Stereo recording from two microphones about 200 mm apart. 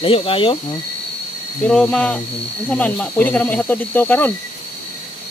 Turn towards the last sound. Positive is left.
turn(degrees=10)  # may be behind; listen again after turning